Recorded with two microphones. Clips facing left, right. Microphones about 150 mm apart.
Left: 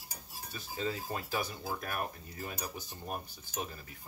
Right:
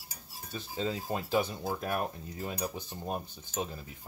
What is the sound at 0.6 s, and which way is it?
Speech, 20° right (ahead or behind).